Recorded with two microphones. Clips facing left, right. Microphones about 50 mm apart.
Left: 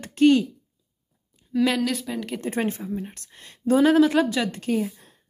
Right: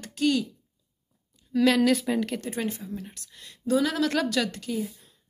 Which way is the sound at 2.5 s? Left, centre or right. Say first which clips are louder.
Left 5 dB; left.